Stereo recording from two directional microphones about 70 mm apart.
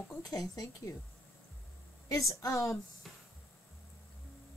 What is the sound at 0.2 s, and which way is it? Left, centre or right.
Speech, left.